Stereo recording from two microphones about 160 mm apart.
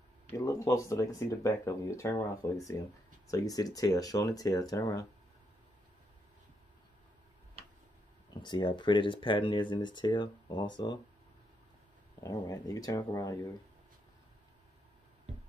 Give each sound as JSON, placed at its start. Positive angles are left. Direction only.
{"t": 0.3, "sound": "speech", "side_deg": 20}
{"t": 8.4, "sound": "speech", "side_deg": 30}
{"t": 12.2, "sound": "speech", "side_deg": 20}